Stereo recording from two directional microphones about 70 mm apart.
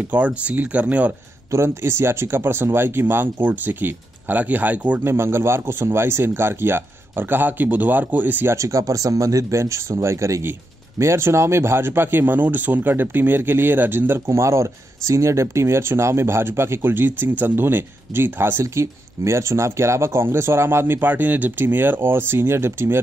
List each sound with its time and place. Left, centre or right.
0.1 s speech: centre
1.5 s speech: right
5.0 s speech: right
8.5 s speech: right
14.2 s speech: right